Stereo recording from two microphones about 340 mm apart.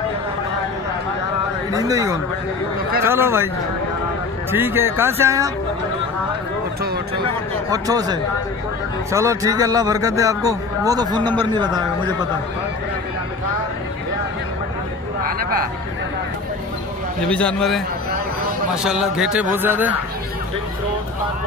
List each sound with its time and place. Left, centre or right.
1.7 s a man's voice: centre
4.5 s a man's voice: centre
7.7 s a man's voice: centre
15.2 s speech: right
17.3 s a man's voice: centre